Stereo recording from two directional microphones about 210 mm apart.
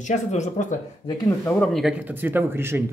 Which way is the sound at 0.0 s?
35° left (ahead or behind).